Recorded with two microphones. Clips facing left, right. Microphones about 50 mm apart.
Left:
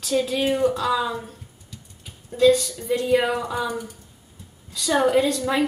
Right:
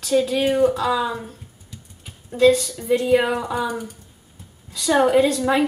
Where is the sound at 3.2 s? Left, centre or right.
Centre.